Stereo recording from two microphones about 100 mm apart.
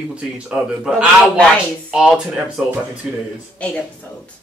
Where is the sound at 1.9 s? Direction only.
5° right (ahead or behind).